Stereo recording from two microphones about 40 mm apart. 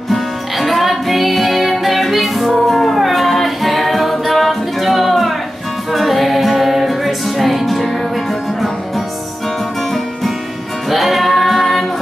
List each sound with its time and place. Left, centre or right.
0.1 s music: centre
10.9 s music: centre